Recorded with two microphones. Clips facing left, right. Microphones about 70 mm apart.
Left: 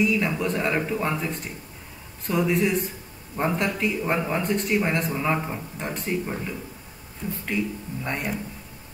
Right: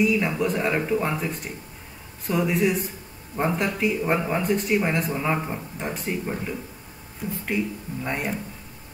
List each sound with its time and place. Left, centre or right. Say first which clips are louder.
0.0 s speech: right 1 dB; centre
7.2 s speech: right 1 dB; centre
8.0 s speech: right 1 dB; centre